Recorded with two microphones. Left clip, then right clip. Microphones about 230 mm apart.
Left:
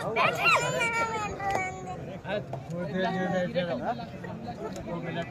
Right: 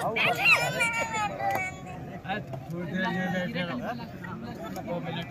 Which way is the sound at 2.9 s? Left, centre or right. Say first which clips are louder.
Left 1 dB; centre.